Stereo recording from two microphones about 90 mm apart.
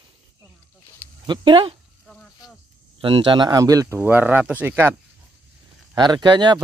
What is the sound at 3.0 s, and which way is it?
Speech, 65° right (ahead or behind).